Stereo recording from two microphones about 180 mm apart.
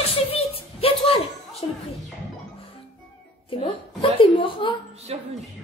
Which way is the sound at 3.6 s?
30° left (ahead or behind).